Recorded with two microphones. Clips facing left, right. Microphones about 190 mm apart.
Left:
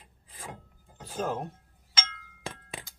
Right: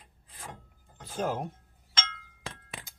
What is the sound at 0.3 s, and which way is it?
Wood, 10° left (ahead or behind).